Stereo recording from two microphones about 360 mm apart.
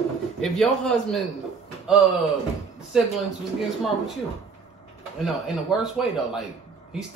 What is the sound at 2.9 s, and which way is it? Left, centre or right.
Speech, centre.